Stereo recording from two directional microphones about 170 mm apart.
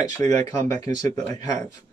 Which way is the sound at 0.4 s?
25° left (ahead or behind).